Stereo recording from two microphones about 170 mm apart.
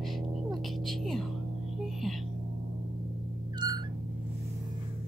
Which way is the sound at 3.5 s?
25° right (ahead or behind).